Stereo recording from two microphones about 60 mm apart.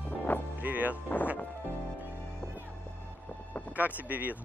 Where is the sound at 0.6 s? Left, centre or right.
Right.